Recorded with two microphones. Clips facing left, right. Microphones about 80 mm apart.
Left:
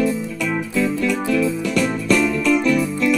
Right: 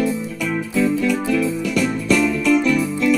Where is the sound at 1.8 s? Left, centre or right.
Left.